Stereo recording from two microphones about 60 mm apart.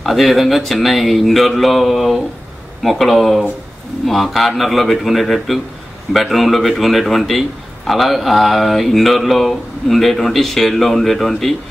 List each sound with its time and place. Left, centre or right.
0.0 s a man's voice: centre